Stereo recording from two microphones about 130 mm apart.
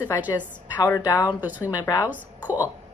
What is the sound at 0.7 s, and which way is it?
A woman's voice, 30° left (ahead or behind).